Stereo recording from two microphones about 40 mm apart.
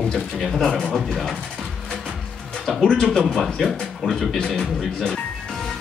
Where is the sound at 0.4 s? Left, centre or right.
Centre.